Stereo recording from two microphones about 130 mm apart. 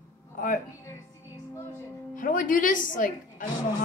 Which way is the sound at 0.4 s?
90° left.